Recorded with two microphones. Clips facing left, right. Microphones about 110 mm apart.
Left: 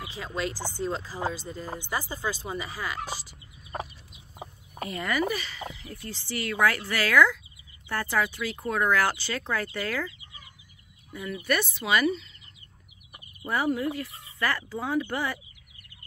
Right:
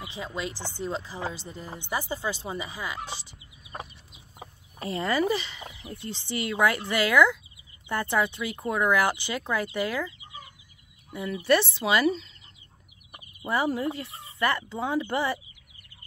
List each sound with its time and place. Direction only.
0.1 s speech: 20° right (ahead or behind)
4.8 s speech: 30° right (ahead or behind)
11.2 s speech: 30° right (ahead or behind)
13.4 s speech: 25° right (ahead or behind)